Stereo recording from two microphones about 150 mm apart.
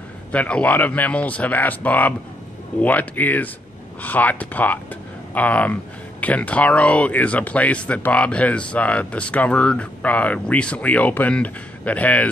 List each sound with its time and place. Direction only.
0.3 s speech: 10° left (ahead or behind)